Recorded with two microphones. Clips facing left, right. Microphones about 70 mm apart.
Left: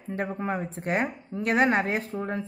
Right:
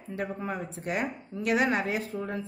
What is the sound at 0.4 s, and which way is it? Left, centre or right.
A woman's voice, left.